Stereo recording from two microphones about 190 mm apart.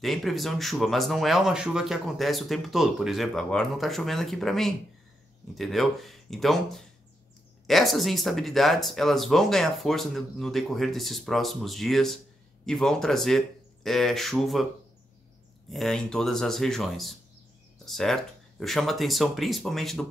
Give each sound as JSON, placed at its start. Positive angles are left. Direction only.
{"t": 0.0, "sound": "speech", "side_deg": 0}
{"t": 15.7, "sound": "speech", "side_deg": 0}